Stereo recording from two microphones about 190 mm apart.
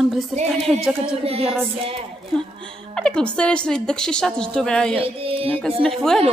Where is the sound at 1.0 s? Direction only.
30° right (ahead or behind).